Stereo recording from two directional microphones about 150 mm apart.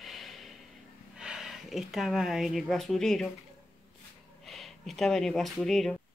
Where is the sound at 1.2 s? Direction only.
5° right (ahead or behind).